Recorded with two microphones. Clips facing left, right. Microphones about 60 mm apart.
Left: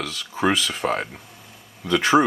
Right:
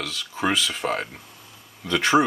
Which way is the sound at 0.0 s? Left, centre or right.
Centre.